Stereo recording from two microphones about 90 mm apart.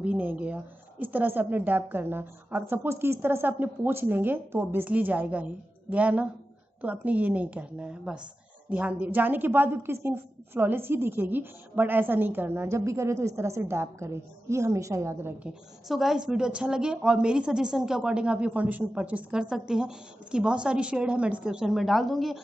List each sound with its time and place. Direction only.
0.0 s a woman's voice: 20° right (ahead or behind); by 15.3 s 35° right (ahead or behind)
15.9 s a woman's voice: 5° right (ahead or behind)